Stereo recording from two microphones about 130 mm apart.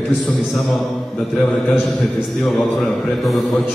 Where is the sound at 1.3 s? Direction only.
10° left (ahead or behind).